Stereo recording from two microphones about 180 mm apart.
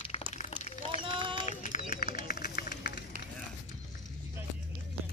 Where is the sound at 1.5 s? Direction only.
45° left (ahead or behind).